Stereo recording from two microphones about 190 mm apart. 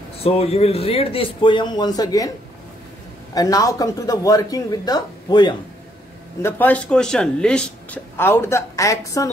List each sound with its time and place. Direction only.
0.2 s speech: 30° left (ahead or behind)
3.3 s speech: 20° left (ahead or behind)
6.4 s speech: 10° left (ahead or behind)